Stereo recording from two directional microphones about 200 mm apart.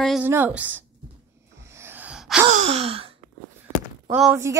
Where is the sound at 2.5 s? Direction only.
30° right (ahead or behind).